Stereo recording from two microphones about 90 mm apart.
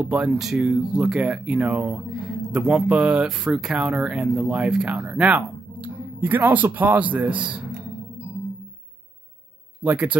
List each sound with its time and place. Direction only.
0.0 s speech: 15° right (ahead or behind)
9.8 s speech: 20° right (ahead or behind)